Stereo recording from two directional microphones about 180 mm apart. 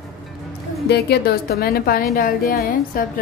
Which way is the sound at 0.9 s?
65° left (ahead or behind).